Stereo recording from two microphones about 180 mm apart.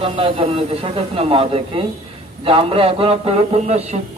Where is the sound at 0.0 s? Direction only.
30° right (ahead or behind).